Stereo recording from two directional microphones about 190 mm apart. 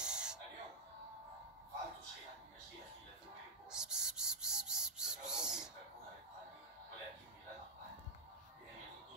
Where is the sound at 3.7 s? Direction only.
5° right (ahead or behind).